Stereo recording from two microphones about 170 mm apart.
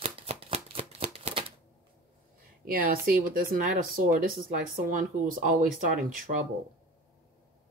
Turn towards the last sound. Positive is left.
turn(degrees=-50)  # may be behind; listen again after turning